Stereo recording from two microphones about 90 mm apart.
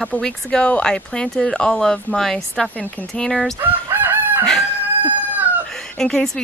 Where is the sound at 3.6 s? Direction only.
20° right (ahead or behind).